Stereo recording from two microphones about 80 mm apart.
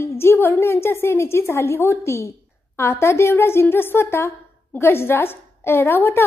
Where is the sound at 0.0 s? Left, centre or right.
Left.